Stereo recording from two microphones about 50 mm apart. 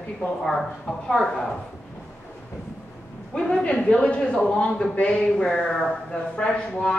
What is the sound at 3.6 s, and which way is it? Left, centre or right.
Speech, centre.